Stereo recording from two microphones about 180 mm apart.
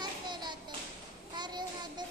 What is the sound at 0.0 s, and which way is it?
Clapping, 25° right (ahead or behind).